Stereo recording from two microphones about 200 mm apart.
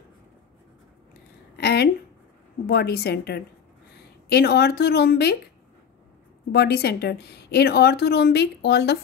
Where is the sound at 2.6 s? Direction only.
55° left (ahead or behind).